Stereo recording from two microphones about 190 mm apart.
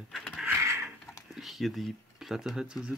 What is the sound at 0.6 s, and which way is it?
Typing, 15° right (ahead or behind).